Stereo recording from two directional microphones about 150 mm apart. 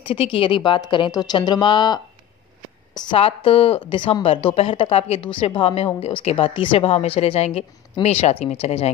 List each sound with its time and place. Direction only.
0.0 s a woman's voice: 40° left (ahead or behind)
2.9 s a sound: 25° left (ahead or behind)
3.2 s a woman's voice: 40° left (ahead or behind)